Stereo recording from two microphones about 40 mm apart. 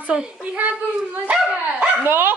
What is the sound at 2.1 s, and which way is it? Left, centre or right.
Speech, right.